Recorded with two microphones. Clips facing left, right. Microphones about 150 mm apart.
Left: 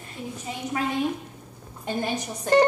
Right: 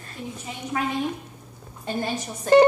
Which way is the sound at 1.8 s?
15° left (ahead or behind).